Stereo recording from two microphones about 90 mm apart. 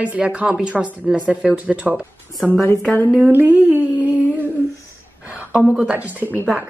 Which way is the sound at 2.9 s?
15° left (ahead or behind).